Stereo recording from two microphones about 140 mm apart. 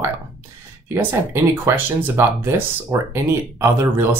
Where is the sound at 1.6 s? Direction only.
15° right (ahead or behind).